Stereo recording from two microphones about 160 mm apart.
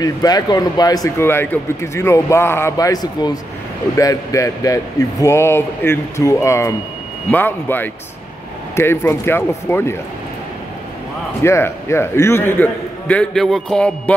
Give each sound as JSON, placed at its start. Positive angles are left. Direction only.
{"t": 0.0, "sound": "speech", "side_deg": 25}
{"t": 11.4, "sound": "a man's voice", "side_deg": 15}